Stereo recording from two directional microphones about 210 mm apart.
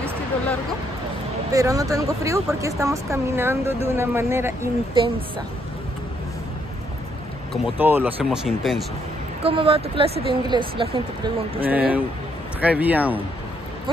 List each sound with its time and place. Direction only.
1.5 s speech: 15° right (ahead or behind)
7.5 s speech: 10° right (ahead or behind)
9.4 s speech: 25° right (ahead or behind)
11.6 s speech: 5° right (ahead or behind)